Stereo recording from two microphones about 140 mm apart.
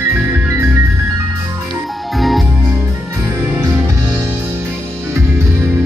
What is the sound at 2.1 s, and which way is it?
Music, centre (ahead or behind).